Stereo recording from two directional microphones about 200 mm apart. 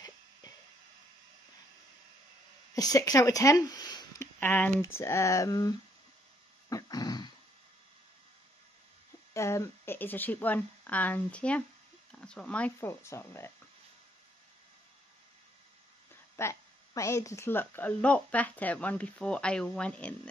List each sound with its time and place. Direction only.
2.7 s speech: 15° left (ahead or behind)
6.7 s a sound: 20° left (ahead or behind)
9.3 s speech: 15° left (ahead or behind)
16.3 s speech: 15° left (ahead or behind)